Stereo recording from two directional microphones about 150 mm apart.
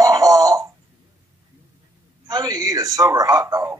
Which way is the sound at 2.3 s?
25° right (ahead or behind).